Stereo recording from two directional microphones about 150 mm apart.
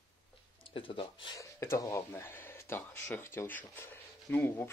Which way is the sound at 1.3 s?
20° left (ahead or behind).